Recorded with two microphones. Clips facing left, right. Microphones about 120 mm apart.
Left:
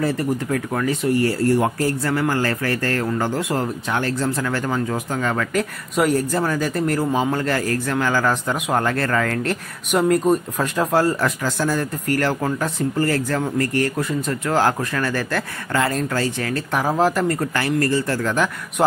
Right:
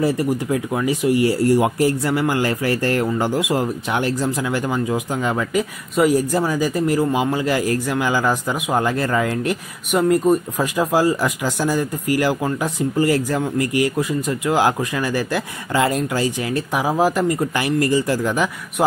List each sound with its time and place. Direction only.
0.0 s speech: 10° right (ahead or behind)
9.8 s speech: centre (ahead or behind)